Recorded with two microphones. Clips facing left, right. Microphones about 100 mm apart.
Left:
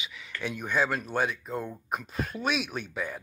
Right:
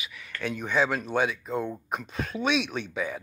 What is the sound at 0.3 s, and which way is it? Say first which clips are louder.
Speech: right 2 dB; 10° left (ahead or behind).